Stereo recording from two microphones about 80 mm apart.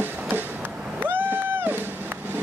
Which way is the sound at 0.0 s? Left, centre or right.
Right.